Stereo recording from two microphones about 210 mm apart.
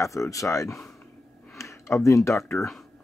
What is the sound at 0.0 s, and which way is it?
Speech, 15° left (ahead or behind).